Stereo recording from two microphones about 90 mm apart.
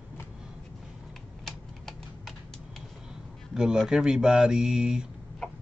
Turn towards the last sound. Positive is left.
turn(degrees=-10)  # may be behind; listen again after turning